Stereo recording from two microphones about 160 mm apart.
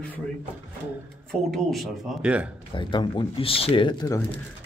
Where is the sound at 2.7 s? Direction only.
30° left (ahead or behind).